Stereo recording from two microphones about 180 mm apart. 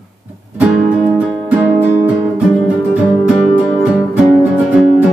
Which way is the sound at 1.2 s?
5° right (ahead or behind).